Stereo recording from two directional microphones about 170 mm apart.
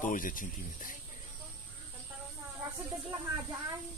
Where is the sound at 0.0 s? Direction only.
55° left (ahead or behind).